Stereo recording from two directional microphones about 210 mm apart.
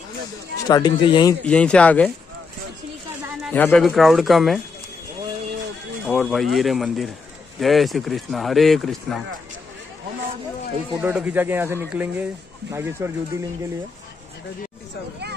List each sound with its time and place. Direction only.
0.7 s speech: 20° left (ahead or behind)
1.4 s speech: 5° left (ahead or behind)
3.5 s speech: 5° left (ahead or behind)
6.0 s speech: centre (ahead or behind)
11.0 s speech: 5° right (ahead or behind)